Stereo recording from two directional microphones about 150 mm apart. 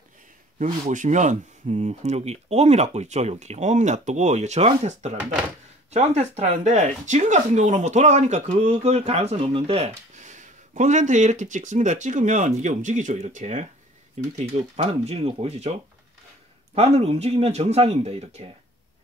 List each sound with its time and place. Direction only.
0.6 s speech: 55° right (ahead or behind)
16.7 s speech: 45° right (ahead or behind)